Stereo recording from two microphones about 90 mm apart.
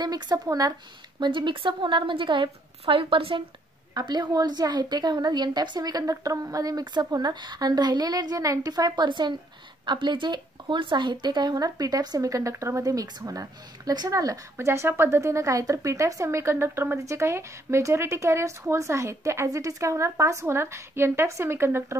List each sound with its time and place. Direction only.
0.0 s a woman's voice: 50° right (ahead or behind)
1.2 s a woman's voice: 65° right (ahead or behind); by 3.4 s 85° right
3.9 s a woman's voice: 50° right (ahead or behind)
9.8 s a woman's voice: 65° right (ahead or behind); by 14.7 s 40° right (ahead or behind)
14.7 s a woman's voice: 25° right (ahead or behind)